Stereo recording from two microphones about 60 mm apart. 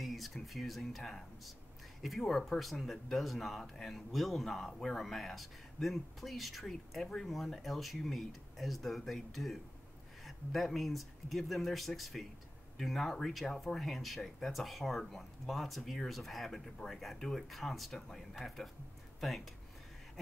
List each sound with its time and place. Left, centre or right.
0.0 s speech: centre